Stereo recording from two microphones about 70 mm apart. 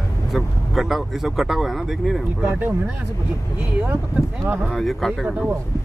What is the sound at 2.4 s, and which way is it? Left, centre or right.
Speech, right.